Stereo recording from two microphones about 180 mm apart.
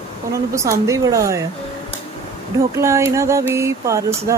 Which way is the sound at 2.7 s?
15° right (ahead or behind).